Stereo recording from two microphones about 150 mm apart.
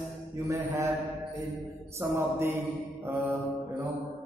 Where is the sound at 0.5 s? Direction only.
20° right (ahead or behind).